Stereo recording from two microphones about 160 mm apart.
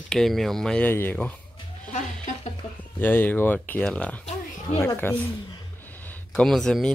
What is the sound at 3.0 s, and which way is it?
Speech, 10° left (ahead or behind).